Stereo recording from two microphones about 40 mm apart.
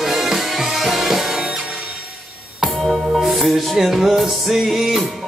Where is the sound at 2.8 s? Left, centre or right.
Centre.